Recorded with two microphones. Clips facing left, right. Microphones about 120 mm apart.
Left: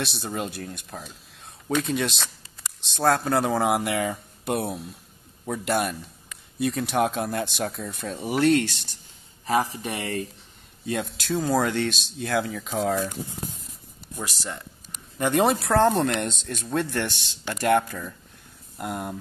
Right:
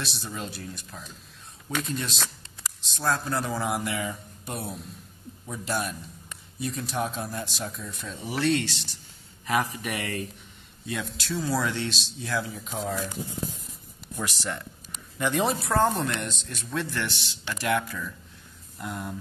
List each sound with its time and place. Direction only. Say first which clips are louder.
0.0 s speech: left 5 dB; 65° left (ahead or behind)
1.9 s a man's voice: left 5 dB; 75° left (ahead or behind); by 8.9 s 50° left (ahead or behind)
9.5 s speech: left 3 dB; 30° left (ahead or behind)
11.1 s speech: left 5 dB; 50° left (ahead or behind); by 13.1 s 70° left (ahead or behind)
15.1 s speech: left 4 dB; 55° left (ahead or behind)
15.6 s speech: left 4 dB; 85° left; by 18.1 s 45° left (ahead or behind)
18.8 s speech: left 4 dB; 55° left (ahead or behind)